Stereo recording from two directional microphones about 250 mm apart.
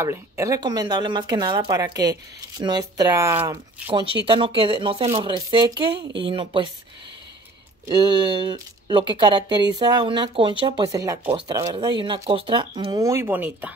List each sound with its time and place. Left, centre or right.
0.0 s speech: centre
3.9 s speech: centre
7.8 s speech: centre